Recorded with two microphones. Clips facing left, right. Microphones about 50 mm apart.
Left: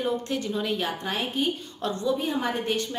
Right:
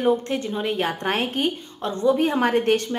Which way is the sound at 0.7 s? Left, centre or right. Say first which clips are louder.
Right 5 dB; right.